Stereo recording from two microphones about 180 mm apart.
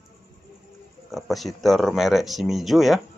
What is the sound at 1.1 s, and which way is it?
Speech, centre (ahead or behind).